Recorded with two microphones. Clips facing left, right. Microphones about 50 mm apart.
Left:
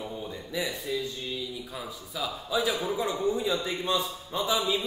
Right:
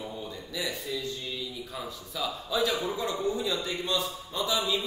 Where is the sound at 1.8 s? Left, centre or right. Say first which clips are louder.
Right 1 dB; centre; by 4.6 s left.